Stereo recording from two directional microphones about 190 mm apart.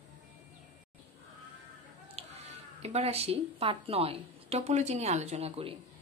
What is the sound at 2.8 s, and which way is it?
A woman's voice, 35° right (ahead or behind).